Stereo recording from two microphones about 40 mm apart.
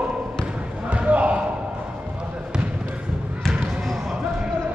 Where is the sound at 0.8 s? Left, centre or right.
Right.